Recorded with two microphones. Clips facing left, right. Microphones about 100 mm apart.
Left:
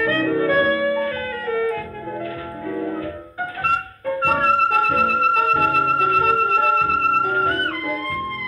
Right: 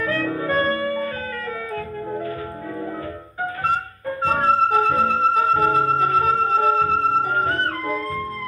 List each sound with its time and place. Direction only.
0.0 s music: 35° right (ahead or behind)
3.6 s music: 35° right (ahead or behind)